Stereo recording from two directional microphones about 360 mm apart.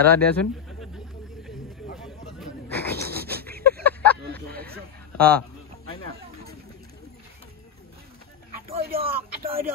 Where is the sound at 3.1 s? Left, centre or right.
Right.